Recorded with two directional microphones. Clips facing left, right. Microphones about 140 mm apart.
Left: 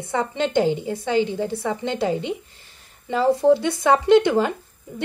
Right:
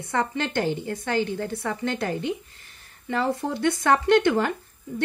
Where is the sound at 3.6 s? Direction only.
15° left (ahead or behind).